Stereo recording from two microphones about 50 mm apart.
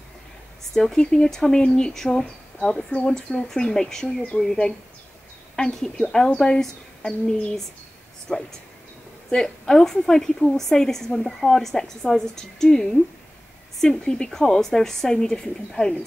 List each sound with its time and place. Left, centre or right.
0.7 s a woman's voice: centre
5.6 s a woman's voice: centre
8.3 s speech: left
9.3 s a woman's voice: centre